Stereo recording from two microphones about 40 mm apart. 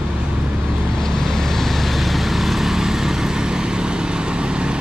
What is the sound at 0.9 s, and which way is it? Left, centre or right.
Vehicle, centre.